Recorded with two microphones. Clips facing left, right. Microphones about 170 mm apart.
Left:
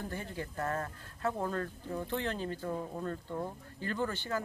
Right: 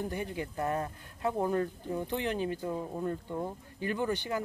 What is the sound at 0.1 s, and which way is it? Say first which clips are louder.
Speech: right 4 dB; 15° right (ahead or behind).